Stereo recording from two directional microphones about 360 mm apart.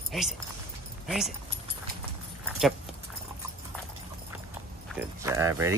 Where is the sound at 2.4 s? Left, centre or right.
Centre.